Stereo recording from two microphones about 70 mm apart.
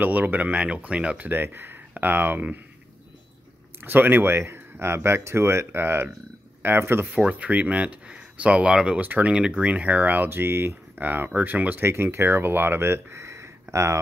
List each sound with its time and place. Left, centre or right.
0.0 s speech: right
3.8 s speech: right
7.1 s speech: centre
9.0 s speech: right
9.3 s speech: centre
11.8 s speech: right